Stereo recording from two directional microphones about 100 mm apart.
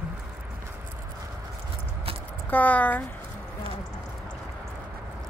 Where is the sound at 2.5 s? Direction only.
15° left (ahead or behind).